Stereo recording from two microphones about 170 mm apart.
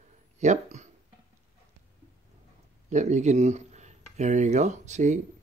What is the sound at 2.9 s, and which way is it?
Speech, 45° right (ahead or behind).